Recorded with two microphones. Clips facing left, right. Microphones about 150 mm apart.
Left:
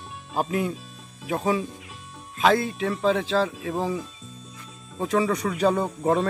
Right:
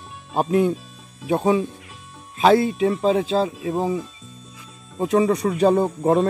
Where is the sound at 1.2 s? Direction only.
25° right (ahead or behind).